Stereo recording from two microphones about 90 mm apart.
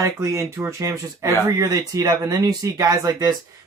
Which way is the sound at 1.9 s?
45° right (ahead or behind).